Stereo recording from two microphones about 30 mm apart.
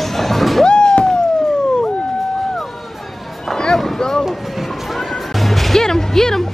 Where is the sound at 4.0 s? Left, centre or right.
Centre.